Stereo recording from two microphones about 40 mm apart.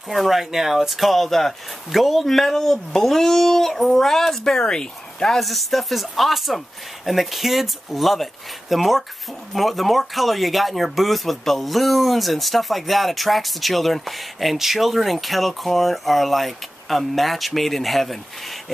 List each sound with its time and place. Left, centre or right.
0.1 s speech: centre
5.4 s speech: centre